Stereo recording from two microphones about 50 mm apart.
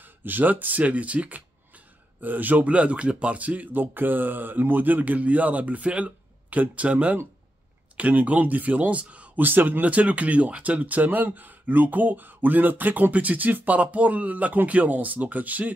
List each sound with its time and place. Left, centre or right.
0.0 s speech: right
9.4 s speech: right